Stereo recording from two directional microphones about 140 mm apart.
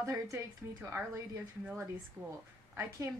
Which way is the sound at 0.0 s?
20° right (ahead or behind).